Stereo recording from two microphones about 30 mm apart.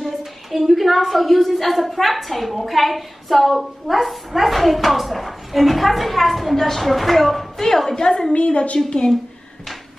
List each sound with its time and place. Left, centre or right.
0.2 s speech: centre
7.6 s a woman's voice: centre
8.3 s a woman's voice: left